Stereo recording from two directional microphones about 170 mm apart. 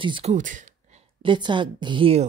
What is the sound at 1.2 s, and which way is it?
A woman's voice, 30° right (ahead or behind).